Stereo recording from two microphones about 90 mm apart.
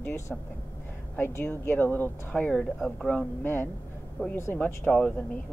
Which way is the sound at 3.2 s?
20° left (ahead or behind).